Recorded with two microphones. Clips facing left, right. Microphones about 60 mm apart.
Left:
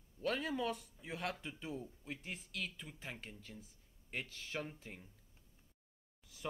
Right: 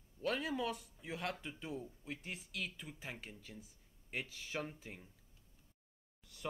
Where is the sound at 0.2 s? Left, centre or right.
Centre.